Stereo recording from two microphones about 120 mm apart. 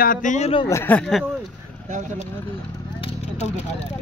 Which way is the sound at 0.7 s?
20° left (ahead or behind).